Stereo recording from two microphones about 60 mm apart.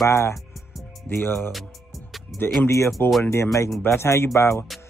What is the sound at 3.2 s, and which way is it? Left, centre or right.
Speech, left.